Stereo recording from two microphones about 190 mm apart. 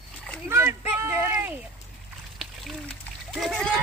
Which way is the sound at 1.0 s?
10° right (ahead or behind).